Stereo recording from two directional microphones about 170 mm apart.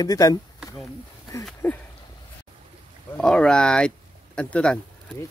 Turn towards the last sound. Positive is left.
turn(degrees=5)  # may be behind; listen again after turning